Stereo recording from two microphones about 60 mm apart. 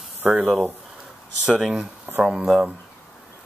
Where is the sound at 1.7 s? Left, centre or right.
Centre.